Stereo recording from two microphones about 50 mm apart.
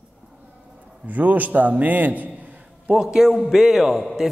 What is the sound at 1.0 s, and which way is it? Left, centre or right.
A man's voice, right.